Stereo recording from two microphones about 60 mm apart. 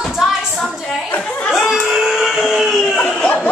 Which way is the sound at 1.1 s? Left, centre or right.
Left.